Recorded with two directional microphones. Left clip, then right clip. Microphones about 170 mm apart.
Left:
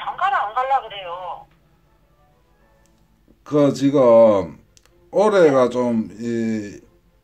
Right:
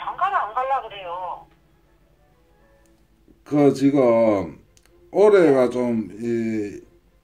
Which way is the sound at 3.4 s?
40° left (ahead or behind).